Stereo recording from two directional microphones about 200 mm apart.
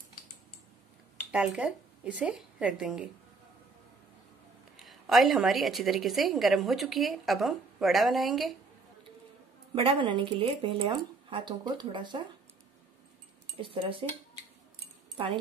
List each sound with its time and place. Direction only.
1.3 s a woman's voice: 5° right (ahead or behind)
4.7 s a woman's voice: centre (ahead or behind)
9.8 s speech: 25° right (ahead or behind)
13.6 s speech: 25° right (ahead or behind)